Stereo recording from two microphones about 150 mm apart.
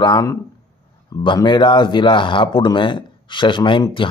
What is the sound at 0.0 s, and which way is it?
A man's voice, 25° left (ahead or behind).